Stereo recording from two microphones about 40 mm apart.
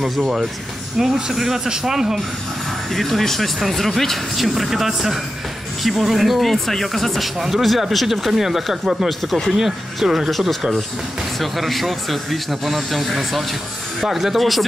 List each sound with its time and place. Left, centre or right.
0.9 s speech: centre
2.9 s speech: centre
4.6 s speech: centre
11.3 s speech: centre